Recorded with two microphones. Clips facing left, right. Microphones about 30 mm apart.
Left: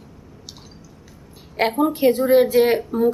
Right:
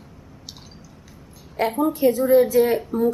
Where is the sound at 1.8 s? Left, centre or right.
Left.